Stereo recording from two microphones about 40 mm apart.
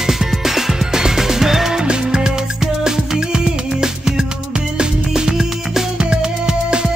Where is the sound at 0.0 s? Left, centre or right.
Centre.